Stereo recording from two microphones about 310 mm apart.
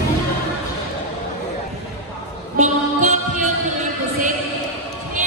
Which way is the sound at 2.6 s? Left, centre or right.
Right.